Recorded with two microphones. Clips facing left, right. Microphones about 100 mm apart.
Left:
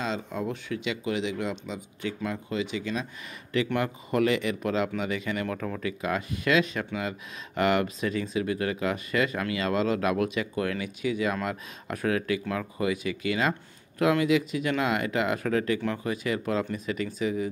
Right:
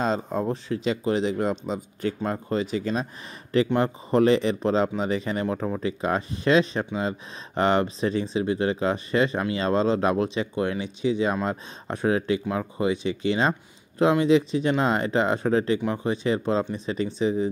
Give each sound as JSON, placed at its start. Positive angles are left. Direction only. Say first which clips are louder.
{"t": 0.0, "sound": "speech", "louder": "right 6 dB", "side_deg": -40}